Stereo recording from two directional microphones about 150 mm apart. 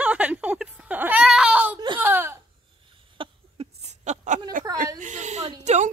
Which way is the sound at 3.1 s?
35° right (ahead or behind).